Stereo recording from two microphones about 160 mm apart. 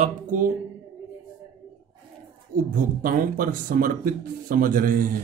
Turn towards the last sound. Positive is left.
turn(degrees=-60)  # may be behind; listen again after turning